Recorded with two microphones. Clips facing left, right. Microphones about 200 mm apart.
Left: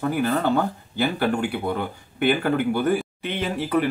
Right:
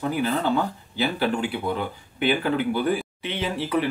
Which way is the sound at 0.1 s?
50° left (ahead or behind).